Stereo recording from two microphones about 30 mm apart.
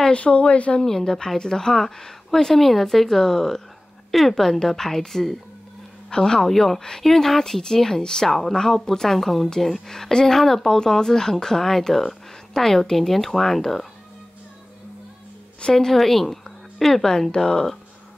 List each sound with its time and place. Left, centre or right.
0.1 s speech: left
0.7 s speech: centre
4.1 s a woman's voice: centre
4.4 s speech: centre
6.0 s speech: left
6.4 s speech: centre
15.7 s speech: centre
17.0 s speech: centre